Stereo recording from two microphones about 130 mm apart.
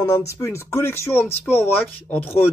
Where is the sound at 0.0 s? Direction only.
25° left (ahead or behind).